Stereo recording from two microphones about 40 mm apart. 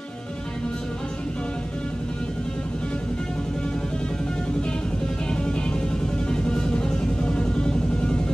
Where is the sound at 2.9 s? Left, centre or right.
Left.